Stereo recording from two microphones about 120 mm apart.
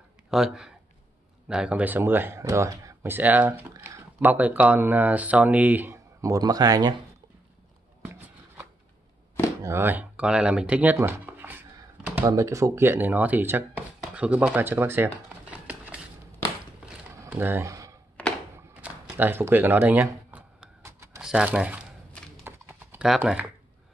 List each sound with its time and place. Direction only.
0.3 s speech: 5° right (ahead or behind)
6.2 s speech: 30° right (ahead or behind)
8.0 s walk: 20° right (ahead or behind)
9.6 s speech: 20° right (ahead or behind)
15.6 s a sound: 15° right (ahead or behind)
17.3 s a sound: 20° right (ahead or behind)
18.8 s speech: 15° right (ahead or behind)
20.3 s a sound: 20° right (ahead or behind)
21.2 s speech: 5° right (ahead or behind)
22.4 s clip-clop: 20° right (ahead or behind)
23.0 s speech: 5° right (ahead or behind)